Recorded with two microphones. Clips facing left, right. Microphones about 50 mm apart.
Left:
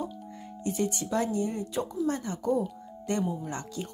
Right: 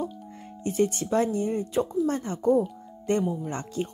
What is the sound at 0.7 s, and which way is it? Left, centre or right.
Speech, right.